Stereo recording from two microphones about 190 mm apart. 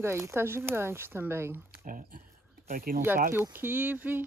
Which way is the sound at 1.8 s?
45° right (ahead or behind).